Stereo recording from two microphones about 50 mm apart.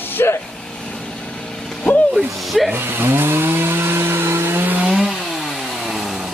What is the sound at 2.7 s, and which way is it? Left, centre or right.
Chainsaw, right.